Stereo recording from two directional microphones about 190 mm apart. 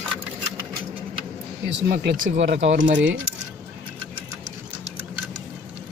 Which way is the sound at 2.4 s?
70° right (ahead or behind).